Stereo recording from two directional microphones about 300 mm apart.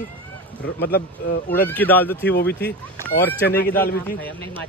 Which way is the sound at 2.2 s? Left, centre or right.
Left.